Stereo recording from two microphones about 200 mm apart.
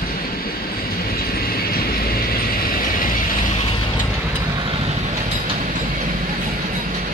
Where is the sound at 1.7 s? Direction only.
45° left (ahead or behind).